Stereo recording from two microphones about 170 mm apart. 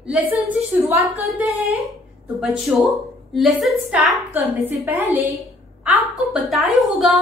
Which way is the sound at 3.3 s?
Centre (ahead or behind).